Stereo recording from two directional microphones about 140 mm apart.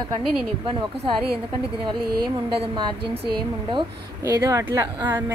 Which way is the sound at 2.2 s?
40° right (ahead or behind).